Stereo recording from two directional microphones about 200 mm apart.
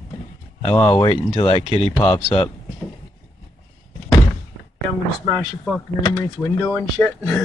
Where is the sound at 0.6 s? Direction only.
25° left (ahead or behind).